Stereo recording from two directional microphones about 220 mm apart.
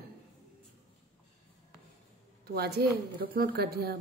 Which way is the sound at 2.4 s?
45° right (ahead or behind).